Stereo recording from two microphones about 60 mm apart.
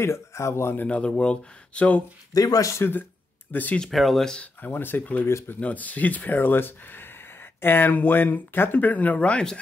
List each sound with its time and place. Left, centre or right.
0.0 s speech: left
0.8 s speech: centre
2.3 s speech: left
2.7 s speech: left
3.8 s speech: centre
4.6 s speech: left
5.6 s speech: left